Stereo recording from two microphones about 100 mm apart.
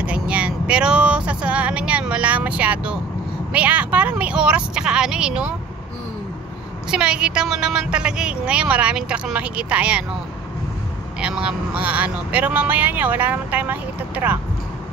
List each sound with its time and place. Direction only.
0.0 s vehicle: 15° right (ahead or behind)
3.5 s speech: 15° right (ahead or behind)
6.9 s speech: 10° right (ahead or behind)
11.1 s speech: 10° right (ahead or behind)